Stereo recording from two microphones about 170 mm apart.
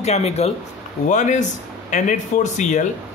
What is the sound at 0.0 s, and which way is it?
A man's voice, 40° left (ahead or behind).